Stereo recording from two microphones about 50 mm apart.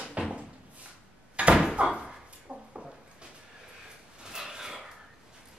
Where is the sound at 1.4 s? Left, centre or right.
Right.